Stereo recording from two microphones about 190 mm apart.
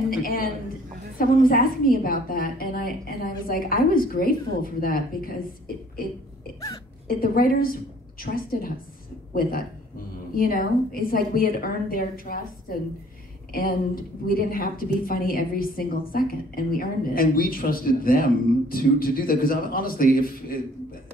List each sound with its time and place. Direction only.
0.1 s a woman's voice: 50° left (ahead or behind)
7.1 s a woman's voice: 50° left (ahead or behind)
13.5 s a woman's voice: 50° left (ahead or behind)